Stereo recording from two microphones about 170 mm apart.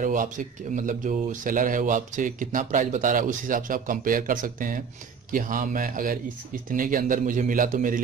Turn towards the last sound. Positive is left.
turn(degrees=-50)  # may be behind; listen again after turning